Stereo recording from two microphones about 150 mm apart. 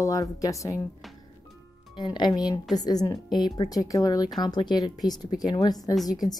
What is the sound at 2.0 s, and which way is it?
Speech, 30° left (ahead or behind).